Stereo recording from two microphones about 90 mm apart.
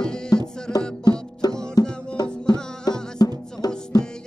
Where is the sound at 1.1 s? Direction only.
50° left (ahead or behind).